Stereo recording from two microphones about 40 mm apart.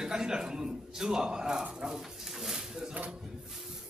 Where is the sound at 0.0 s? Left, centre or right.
Centre.